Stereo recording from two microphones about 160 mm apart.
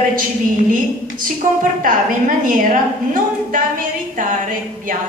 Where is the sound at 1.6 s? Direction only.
60° right (ahead or behind).